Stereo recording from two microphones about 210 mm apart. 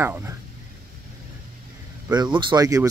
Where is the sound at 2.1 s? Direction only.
20° right (ahead or behind).